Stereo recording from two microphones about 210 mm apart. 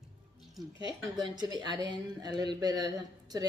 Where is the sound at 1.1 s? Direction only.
20° right (ahead or behind).